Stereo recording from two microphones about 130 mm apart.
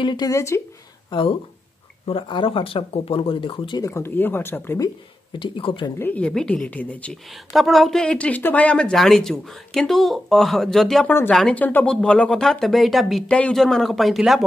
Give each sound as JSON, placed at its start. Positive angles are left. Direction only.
{"t": 0.0, "sound": "speech", "side_deg": 30}
{"t": 2.0, "sound": "speech", "side_deg": 40}
{"t": 3.8, "sound": "speech", "side_deg": 20}
{"t": 5.4, "sound": "speech", "side_deg": 40}
{"t": 5.9, "sound": "speech", "side_deg": 10}
{"t": 7.5, "sound": "speech", "side_deg": 0}
{"t": 11.1, "sound": "speech", "side_deg": 15}